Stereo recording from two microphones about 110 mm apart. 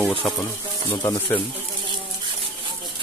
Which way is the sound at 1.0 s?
20° left (ahead or behind).